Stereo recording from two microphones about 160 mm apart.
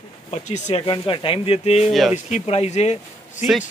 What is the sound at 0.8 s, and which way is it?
A man's voice, 30° left (ahead or behind).